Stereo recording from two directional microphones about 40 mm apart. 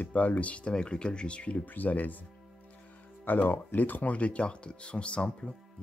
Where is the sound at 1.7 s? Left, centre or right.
Left.